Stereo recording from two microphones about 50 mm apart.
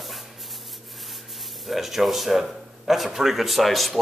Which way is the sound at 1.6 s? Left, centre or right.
Centre.